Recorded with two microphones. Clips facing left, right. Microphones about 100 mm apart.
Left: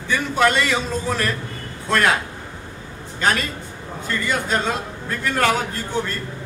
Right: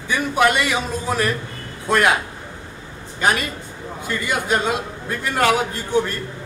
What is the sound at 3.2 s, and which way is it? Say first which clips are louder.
A man's voice: right 1 dB; 15° right (ahead or behind).